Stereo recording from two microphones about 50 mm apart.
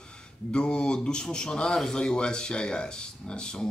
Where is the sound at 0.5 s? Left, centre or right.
Centre.